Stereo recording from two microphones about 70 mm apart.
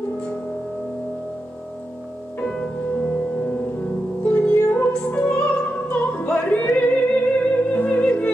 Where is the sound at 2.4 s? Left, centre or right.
Centre.